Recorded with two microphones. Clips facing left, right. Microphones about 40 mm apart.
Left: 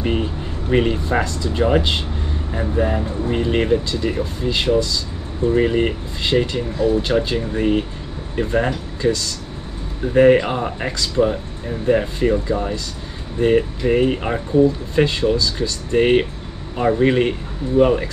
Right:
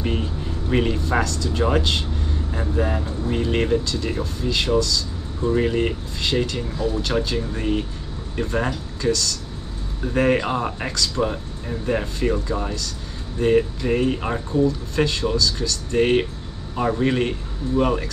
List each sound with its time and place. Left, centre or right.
0.0 s speech: centre